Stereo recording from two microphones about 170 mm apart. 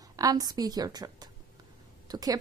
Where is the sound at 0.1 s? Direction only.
20° right (ahead or behind).